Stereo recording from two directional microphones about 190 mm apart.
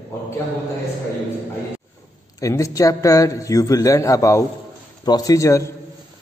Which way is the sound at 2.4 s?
15° left (ahead or behind).